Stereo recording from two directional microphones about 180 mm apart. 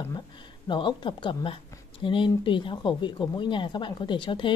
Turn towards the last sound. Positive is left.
turn(degrees=25)  # may be behind; listen again after turning